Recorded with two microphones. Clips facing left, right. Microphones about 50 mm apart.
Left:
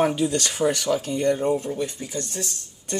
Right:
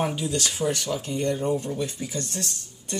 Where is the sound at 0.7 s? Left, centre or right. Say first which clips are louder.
Left 5 dB; left.